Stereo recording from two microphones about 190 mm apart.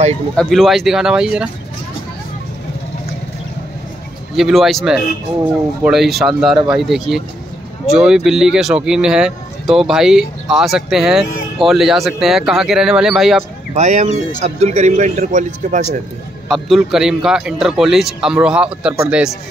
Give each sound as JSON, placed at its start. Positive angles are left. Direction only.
{"t": 0.4, "sound": "speech", "side_deg": 0}
{"t": 4.4, "sound": "speech", "side_deg": 0}
{"t": 13.7, "sound": "a man's voice", "side_deg": -35}
{"t": 16.4, "sound": "speech", "side_deg": 0}